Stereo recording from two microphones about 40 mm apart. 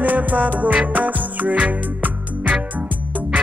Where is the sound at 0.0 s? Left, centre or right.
Right.